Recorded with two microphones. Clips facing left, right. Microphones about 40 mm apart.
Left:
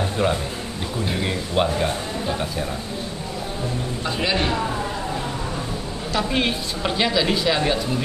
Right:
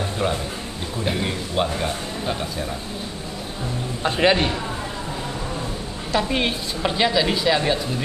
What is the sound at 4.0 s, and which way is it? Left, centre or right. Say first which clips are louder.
Speech: right 7 dB; right.